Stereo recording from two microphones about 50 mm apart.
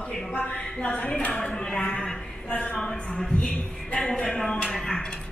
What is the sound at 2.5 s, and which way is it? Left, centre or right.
Speech, left.